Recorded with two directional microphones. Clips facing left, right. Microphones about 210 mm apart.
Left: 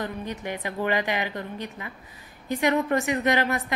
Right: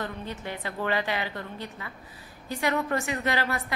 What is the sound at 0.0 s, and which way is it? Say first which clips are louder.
A woman's voice: left 3 dB; 15° left (ahead or behind).